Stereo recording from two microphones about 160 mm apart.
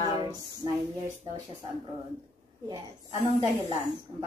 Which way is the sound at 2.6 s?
20° right (ahead or behind).